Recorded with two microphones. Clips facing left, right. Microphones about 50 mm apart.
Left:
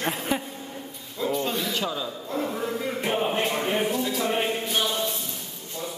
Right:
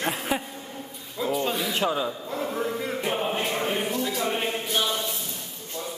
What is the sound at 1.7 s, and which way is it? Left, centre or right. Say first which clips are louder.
Speech: right 3 dB; right.